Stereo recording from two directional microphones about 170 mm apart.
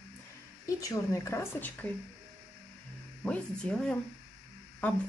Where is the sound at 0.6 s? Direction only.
20° left (ahead or behind).